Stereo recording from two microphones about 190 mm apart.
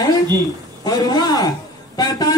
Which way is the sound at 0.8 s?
20° left (ahead or behind).